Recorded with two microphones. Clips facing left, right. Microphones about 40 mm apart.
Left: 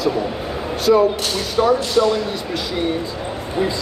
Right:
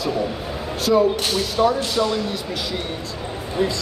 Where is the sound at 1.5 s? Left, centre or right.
Centre.